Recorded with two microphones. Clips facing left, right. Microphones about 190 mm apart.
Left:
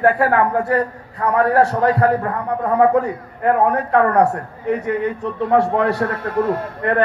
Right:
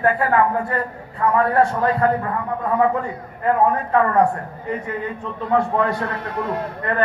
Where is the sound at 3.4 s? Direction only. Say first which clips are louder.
Left 2 dB; 70° left (ahead or behind).